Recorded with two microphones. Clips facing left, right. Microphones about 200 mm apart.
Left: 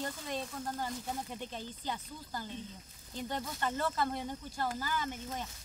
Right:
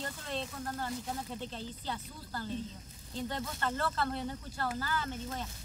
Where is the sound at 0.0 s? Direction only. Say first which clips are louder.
Even; 10° left (ahead or behind).